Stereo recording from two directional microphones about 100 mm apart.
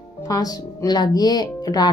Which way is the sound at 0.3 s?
40° left (ahead or behind).